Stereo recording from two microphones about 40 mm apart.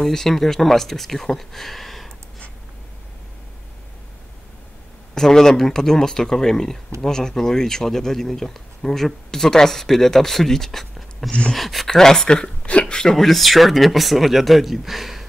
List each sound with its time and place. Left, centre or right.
0.0 s speech: centre
5.1 s speech: centre
11.9 s speech: centre
12.6 s a sound: left
12.9 s speech: centre
13.2 s speech: centre